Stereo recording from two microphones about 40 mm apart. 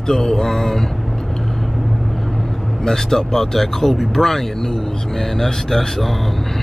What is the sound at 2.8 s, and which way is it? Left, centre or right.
Speech, centre.